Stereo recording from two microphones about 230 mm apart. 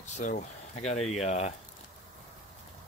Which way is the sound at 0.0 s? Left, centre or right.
Left.